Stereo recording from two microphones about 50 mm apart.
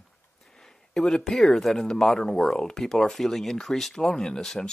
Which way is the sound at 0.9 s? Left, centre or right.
Centre.